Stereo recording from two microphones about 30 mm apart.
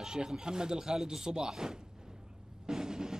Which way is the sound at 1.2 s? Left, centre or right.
Centre.